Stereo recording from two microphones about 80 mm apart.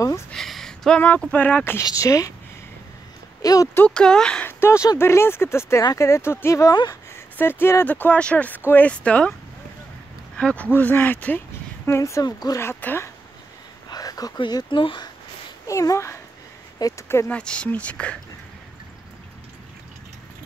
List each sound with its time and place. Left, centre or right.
0.3 s speech: centre; by 1.8 s left
1.8 s speech: left
3.4 s speech: left
3.9 s speech: centre
4.5 s speech: left; by 9.3 s centre
10.3 s speech: centre
12.0 s speech: left
12.5 s speech: left
13.8 s a sound: left
14.4 s speech: left
15.6 s speech: left
16.7 s speech: left
17.3 s speech: centre